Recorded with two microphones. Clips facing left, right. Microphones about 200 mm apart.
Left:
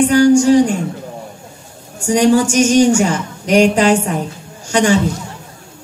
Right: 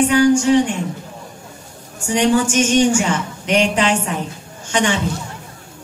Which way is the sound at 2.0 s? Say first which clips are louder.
Left 4 dB; 40° left (ahead or behind).